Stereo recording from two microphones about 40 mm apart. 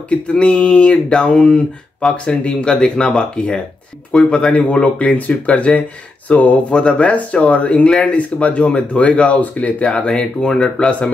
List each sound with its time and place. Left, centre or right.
0.1 s speech: left
5.3 s speech: left
6.2 s speech: left
9.9 s speech: left
10.8 s speech: left